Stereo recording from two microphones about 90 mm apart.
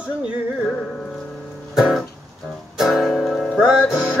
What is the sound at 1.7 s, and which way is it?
Music, 5° right (ahead or behind).